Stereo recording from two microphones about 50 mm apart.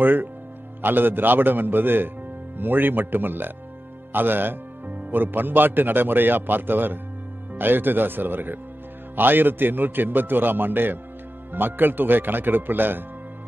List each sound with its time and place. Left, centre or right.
0.0 s a man's voice: right